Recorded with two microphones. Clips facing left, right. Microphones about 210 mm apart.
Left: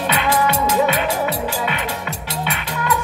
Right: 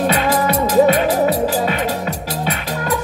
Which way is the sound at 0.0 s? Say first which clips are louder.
Right 3 dB; 40° right (ahead or behind).